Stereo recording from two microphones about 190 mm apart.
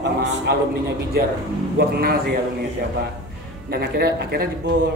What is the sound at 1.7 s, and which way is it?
Speech, 55° right (ahead or behind).